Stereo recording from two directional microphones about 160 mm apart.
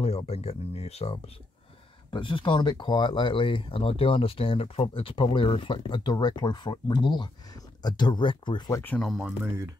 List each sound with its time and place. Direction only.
0.0 s speech: 40° left (ahead or behind)
8.8 s speech: 10° left (ahead or behind)
9.1 s speech: 5° right (ahead or behind)